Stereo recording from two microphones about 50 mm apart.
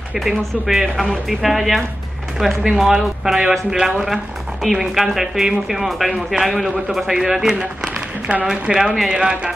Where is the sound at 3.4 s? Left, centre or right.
Centre.